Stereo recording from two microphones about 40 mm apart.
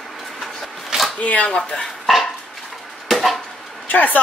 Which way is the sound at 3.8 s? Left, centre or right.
Left.